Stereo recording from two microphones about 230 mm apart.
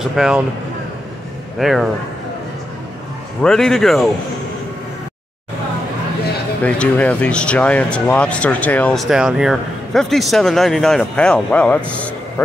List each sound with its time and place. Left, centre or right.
0.0 s speech: centre
1.6 s speech: centre
3.4 s speech: centre
6.6 s speech: centre